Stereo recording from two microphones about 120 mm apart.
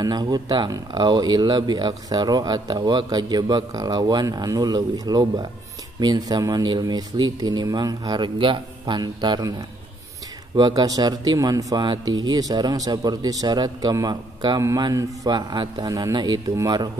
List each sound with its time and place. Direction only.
0.0 s speech: 35° right (ahead or behind)
10.5 s speech: 35° right (ahead or behind)